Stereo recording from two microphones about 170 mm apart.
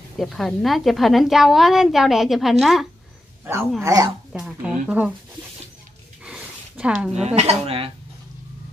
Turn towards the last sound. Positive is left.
turn(degrees=-35)  # may be behind; listen again after turning